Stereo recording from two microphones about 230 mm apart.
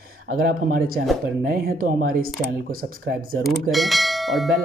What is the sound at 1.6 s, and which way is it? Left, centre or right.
Speech, right.